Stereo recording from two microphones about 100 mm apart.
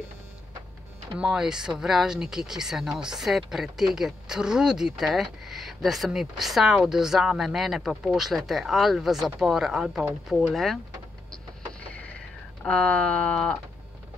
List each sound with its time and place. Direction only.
1.2 s speech: 5° right (ahead or behind)
12.6 s speech: 10° left (ahead or behind)